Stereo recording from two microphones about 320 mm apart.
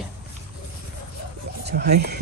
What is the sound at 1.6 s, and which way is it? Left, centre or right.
Speech, right.